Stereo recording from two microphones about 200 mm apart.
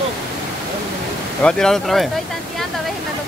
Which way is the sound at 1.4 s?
5° left (ahead or behind).